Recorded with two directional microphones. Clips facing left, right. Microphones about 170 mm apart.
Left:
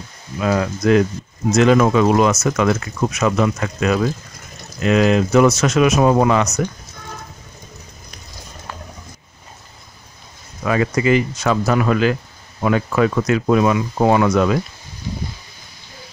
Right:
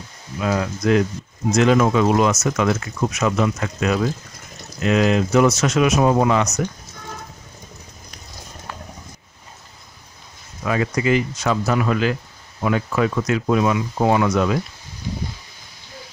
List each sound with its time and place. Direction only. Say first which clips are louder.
0.4 s speech: left 3 dB; 65° left (ahead or behind)
1.6 s speech: left 3 dB; 90° left; by 6.4 s 70° left (ahead or behind)
10.6 s speech: left 3 dB; 70° left (ahead or behind)